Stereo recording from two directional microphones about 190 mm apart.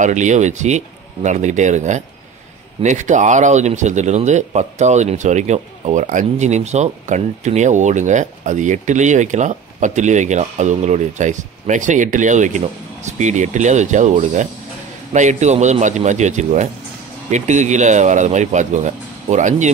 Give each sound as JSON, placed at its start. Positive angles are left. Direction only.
{"t": 0.0, "sound": "speech", "side_deg": -40}